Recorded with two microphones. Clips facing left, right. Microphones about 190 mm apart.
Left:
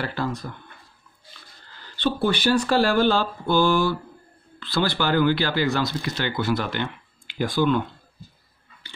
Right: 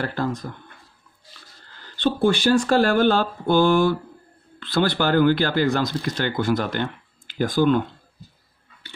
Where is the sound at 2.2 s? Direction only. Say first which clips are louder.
Right 3 dB; 45° right (ahead or behind).